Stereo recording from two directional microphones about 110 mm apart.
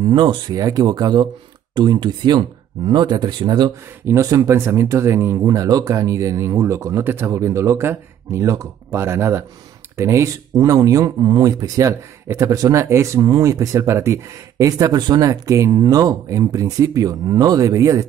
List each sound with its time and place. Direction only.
0.0 s speech: 45° right (ahead or behind)
4.0 s speech: 25° right (ahead or behind)